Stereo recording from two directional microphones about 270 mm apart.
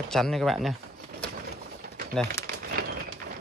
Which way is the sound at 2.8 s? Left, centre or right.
Right.